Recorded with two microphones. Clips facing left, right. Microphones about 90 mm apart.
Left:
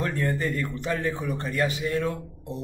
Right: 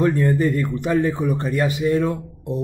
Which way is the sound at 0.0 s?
15° right (ahead or behind).